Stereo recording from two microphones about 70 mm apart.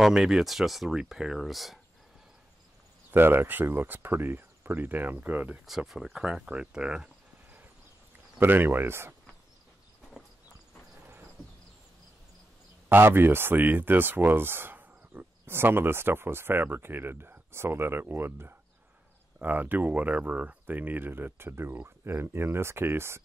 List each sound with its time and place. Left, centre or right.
0.0 s speech: centre
3.1 s speech: right
5.9 s speech: centre
8.4 s speech: right
12.9 s speech: right